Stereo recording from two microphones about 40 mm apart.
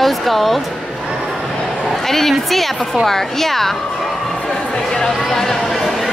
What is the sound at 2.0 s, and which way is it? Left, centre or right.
Speech, centre.